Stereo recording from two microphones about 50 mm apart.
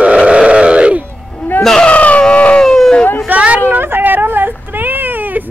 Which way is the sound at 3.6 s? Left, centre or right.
Right.